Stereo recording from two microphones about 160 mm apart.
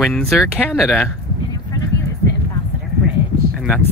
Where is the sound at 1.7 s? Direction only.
25° left (ahead or behind).